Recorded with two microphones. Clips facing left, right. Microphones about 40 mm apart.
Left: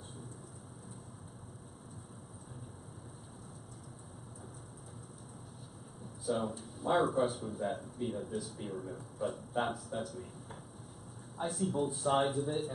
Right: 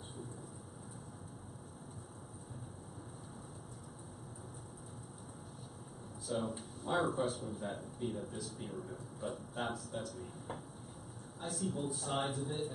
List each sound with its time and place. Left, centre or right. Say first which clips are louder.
6.2 s a man's voice: left 4 dB; centre
11.3 s a man's voice: left 6 dB; left
12.1 s speech: left 8 dB; centre